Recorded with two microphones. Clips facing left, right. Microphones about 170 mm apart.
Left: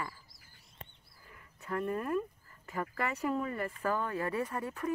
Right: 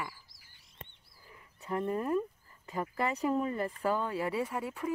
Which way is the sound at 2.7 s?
20° right (ahead or behind).